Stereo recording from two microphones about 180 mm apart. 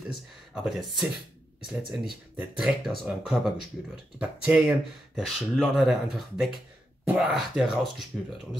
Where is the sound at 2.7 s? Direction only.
5° right (ahead or behind).